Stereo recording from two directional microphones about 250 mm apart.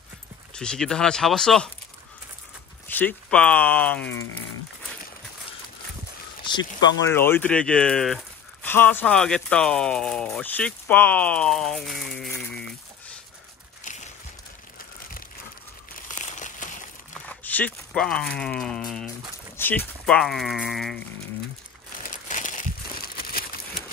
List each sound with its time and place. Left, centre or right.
0.6 s speech: centre
2.9 s speech: centre
6.4 s speech: centre
13.8 s a sound: left
16.1 s crumpling: left
17.3 s speech: centre
22.0 s crumpling: left
23.1 s a sound: left